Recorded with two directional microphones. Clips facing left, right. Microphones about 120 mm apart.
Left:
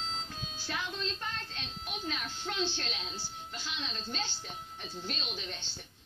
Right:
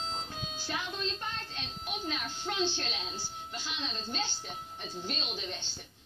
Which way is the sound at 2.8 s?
15° right (ahead or behind).